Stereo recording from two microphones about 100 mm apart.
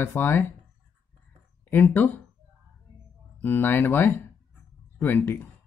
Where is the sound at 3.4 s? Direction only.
20° left (ahead or behind).